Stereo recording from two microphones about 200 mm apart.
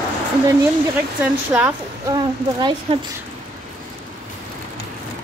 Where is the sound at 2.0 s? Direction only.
20° right (ahead or behind).